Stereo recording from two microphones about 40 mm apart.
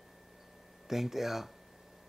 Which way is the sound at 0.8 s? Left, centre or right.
Centre.